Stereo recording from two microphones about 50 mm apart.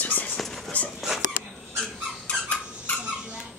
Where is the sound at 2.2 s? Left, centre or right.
Left.